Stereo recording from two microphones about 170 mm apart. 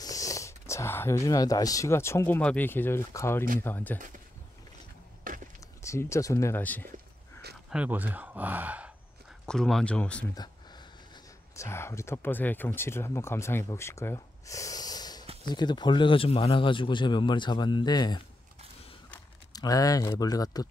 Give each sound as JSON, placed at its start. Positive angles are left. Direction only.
{"t": 0.0, "sound": "speech", "side_deg": 20}
{"t": 5.3, "sound": "a sound", "side_deg": -55}
{"t": 5.8, "sound": "speech", "side_deg": 15}
{"t": 7.7, "sound": "speech", "side_deg": -10}
{"t": 9.5, "sound": "speech", "side_deg": 5}
{"t": 11.5, "sound": "a man's voice", "side_deg": 15}
{"t": 19.5, "sound": "a man's voice", "side_deg": 20}